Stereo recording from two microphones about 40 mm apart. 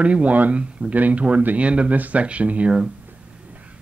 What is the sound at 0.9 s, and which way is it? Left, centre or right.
Speech, right.